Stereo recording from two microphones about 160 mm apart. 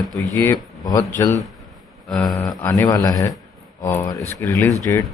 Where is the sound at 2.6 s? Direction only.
20° left (ahead or behind).